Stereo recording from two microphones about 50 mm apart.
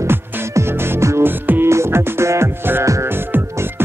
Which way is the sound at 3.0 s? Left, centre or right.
Right.